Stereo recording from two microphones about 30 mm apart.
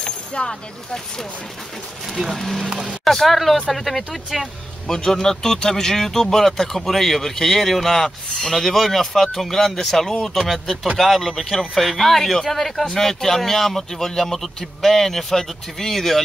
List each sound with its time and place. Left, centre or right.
0.0 s a sound: left
2.2 s a man's voice: centre
2.6 s speech: right
3.1 s a man's voice: centre
4.8 s a man's voice: centre
8.7 s a man's voice: centre